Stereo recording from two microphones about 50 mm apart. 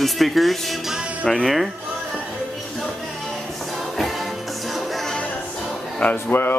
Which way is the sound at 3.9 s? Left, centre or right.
Centre.